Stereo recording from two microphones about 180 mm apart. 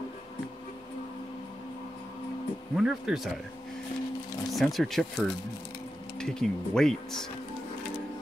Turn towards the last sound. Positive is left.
turn(degrees=0)  # may be behind; listen again after turning